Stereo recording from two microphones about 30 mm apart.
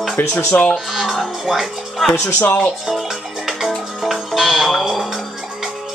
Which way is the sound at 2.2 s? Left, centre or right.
Left.